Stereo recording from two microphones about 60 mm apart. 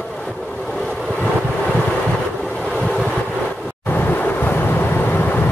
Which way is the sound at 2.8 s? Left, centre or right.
Centre.